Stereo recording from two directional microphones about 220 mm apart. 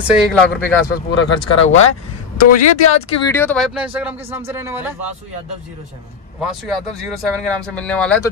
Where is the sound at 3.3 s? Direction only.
5° left (ahead or behind); by 4.8 s 10° right (ahead or behind).